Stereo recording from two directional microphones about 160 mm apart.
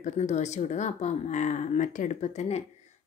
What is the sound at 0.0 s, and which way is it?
Speech, 45° left (ahead or behind).